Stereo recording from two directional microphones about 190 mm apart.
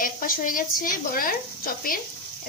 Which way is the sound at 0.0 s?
45° left (ahead or behind).